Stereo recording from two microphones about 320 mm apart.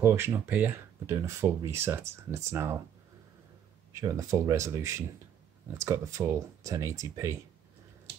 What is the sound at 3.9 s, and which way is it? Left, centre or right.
Speech, centre.